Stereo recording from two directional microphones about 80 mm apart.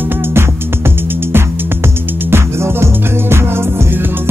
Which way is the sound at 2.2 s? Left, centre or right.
Right.